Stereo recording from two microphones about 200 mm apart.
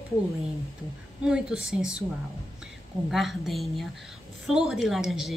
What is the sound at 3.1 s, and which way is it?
A woman's voice, centre (ahead or behind).